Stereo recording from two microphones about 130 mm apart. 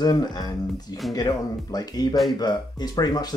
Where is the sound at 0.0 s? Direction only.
30° left (ahead or behind).